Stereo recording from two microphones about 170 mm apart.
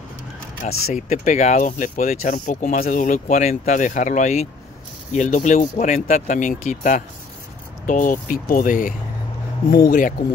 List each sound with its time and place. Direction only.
0.6 s speech: 45° left (ahead or behind)